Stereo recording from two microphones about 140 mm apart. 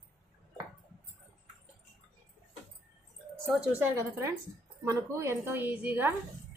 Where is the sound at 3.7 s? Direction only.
15° right (ahead or behind).